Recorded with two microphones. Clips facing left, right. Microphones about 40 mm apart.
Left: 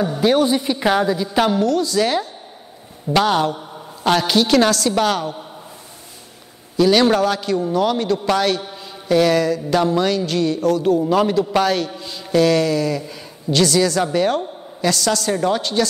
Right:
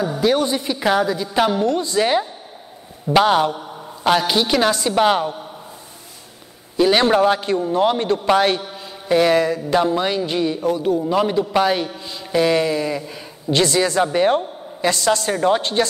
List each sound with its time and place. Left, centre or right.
0.2 s a woman's voice: centre
1.5 s a man's voice: right
6.8 s a man's voice: right
12.0 s mantra: centre
13.5 s a man's voice: right